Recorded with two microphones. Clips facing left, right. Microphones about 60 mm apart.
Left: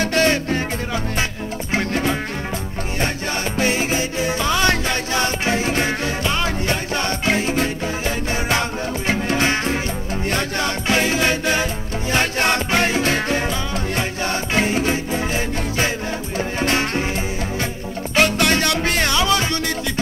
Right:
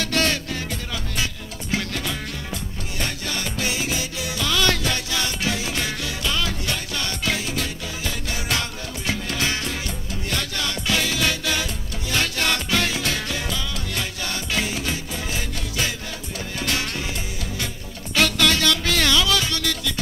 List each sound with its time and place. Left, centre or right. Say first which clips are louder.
0.0 s music: left 6 dB; left
1.7 s music: left 6 dB; left
18.1 s music: left 3 dB; left